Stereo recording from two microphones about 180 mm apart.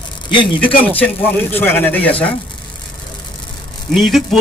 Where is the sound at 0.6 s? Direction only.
10° left (ahead or behind).